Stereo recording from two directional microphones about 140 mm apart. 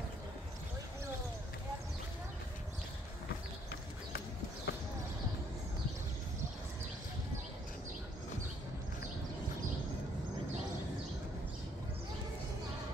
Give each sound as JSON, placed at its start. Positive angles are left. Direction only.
{"t": 4.7, "sound": "clip-clop", "side_deg": 90}